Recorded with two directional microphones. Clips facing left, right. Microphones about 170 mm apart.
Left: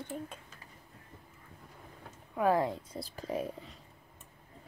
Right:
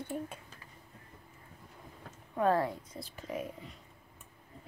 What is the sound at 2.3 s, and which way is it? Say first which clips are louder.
Speech: even; 10° left (ahead or behind).